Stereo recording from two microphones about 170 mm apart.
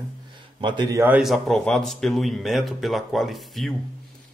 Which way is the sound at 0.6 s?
25° right (ahead or behind).